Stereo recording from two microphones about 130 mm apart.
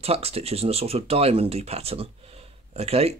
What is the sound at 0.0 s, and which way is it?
Speech, 50° right (ahead or behind).